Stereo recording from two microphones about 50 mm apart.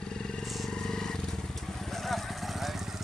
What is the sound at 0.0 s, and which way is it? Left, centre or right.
Vehicle, centre.